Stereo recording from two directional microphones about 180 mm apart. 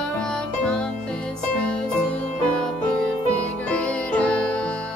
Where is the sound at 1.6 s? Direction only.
5° left (ahead or behind).